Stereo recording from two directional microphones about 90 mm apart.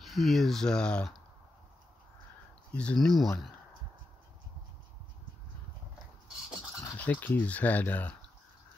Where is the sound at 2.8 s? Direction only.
10° left (ahead or behind).